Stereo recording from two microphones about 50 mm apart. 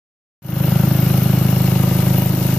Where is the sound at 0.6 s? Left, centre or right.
Centre.